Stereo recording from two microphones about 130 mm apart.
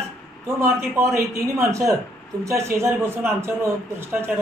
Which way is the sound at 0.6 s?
20° right (ahead or behind).